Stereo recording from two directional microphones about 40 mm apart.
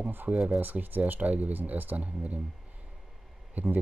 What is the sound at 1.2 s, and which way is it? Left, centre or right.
Speech, right.